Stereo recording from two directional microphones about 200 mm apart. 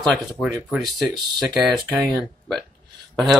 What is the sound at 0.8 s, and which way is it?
Speech, 20° right (ahead or behind).